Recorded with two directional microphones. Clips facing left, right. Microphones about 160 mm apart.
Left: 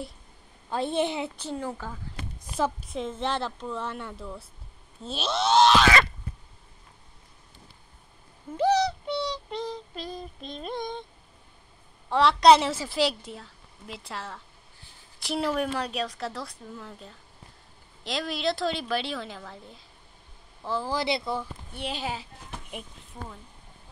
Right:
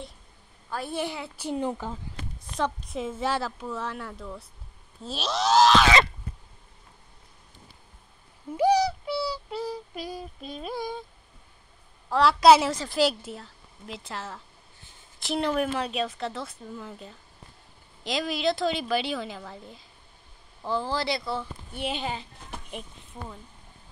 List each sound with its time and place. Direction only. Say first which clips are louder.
0.7 s a woman's voice: left 4 dB; 25° left (ahead or behind)
1.3 s a child's voice: right 4 dB; 15° right (ahead or behind)
2.4 s speech: left 1 dB; 5° left (ahead or behind)
8.5 s synthetic singing: right 1 dB; 10° right (ahead or behind)
12.1 s speech: even; centre (ahead or behind)
20.9 s a woman's voice: left 1 dB; 20° left (ahead or behind)
21.7 s speech: right 2 dB; centre (ahead or behind)